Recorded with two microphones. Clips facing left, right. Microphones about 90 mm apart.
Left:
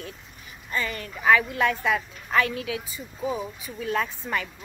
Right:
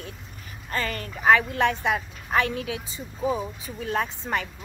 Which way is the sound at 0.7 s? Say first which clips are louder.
Right 1 dB; 45° right (ahead or behind).